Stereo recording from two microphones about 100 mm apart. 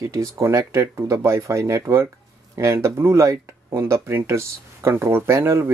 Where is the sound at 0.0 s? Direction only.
30° right (ahead or behind).